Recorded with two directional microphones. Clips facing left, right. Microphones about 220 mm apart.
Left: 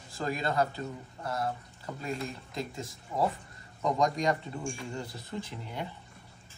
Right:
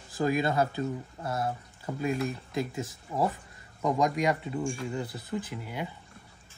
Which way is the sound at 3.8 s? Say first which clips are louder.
Right 2 dB; 5° right (ahead or behind).